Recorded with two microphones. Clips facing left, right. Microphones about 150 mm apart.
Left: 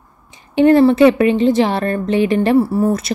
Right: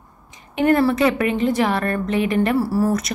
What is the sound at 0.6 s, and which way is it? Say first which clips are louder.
A woman's voice: left 7 dB; 30° left (ahead or behind).